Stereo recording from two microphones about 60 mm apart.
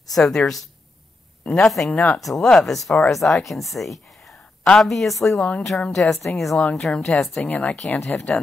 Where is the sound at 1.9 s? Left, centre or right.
Left.